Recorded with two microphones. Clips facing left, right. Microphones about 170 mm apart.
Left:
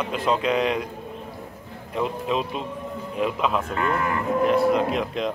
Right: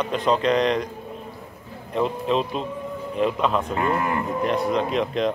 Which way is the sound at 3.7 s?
25° right (ahead or behind).